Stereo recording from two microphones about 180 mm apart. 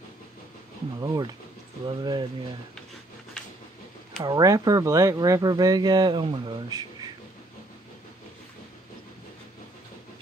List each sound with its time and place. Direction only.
1.0 s speech: 20° right (ahead or behind)
4.2 s speech: 20° right (ahead or behind)